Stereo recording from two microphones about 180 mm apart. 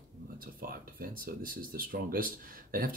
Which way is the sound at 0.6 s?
55° right (ahead or behind).